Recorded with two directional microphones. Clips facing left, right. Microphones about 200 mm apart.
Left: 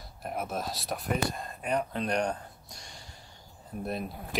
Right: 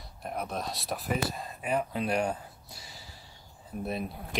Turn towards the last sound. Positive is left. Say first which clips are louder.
# even
turn(degrees=0)  # may be behind; listen again after turning